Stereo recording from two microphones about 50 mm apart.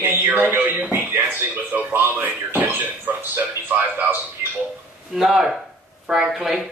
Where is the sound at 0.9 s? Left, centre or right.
Right.